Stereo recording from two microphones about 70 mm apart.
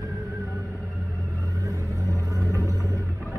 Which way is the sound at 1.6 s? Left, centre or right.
Right.